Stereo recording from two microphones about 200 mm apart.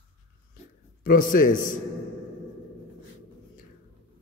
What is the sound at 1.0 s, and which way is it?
Speech, 45° left (ahead or behind).